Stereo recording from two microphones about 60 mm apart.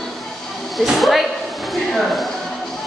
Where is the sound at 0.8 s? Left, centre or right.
Centre.